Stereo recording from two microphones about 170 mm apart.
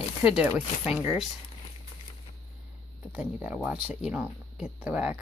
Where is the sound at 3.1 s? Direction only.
10° right (ahead or behind).